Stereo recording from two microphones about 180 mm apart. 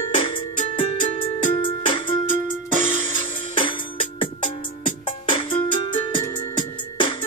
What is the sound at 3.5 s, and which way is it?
Music, 30° left (ahead or behind).